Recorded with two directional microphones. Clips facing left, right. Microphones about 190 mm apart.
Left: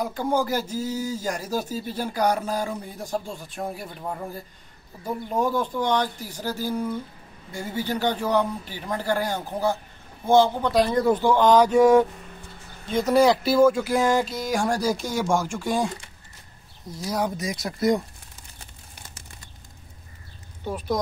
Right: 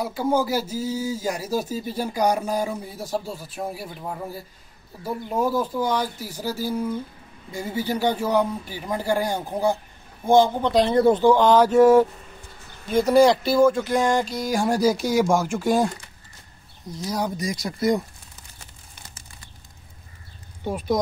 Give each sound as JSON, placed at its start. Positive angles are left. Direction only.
{"t": 0.0, "sound": "speech", "side_deg": -5}
{"t": 13.1, "sound": "speech", "side_deg": 0}
{"t": 16.9, "sound": "speech", "side_deg": 0}
{"t": 20.6, "sound": "speech", "side_deg": -10}